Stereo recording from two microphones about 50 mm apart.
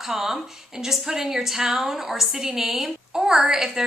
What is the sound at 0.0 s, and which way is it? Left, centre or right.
A woman's voice, centre.